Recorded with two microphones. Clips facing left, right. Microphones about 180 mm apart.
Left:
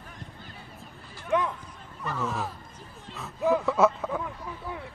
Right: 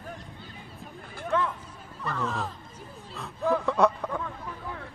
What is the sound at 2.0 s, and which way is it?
Speech, 5° left (ahead or behind).